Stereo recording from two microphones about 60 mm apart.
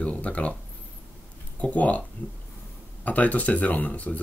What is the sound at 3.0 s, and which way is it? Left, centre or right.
Speech, left.